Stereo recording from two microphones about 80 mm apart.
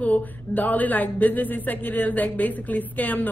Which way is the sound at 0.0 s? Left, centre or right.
Left.